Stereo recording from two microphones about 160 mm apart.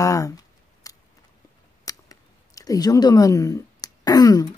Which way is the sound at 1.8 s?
20° left (ahead or behind).